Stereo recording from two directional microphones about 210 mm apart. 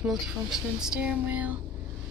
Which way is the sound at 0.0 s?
Centre (ahead or behind).